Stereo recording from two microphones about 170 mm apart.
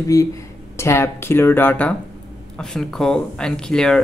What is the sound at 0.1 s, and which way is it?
Speech, 20° left (ahead or behind).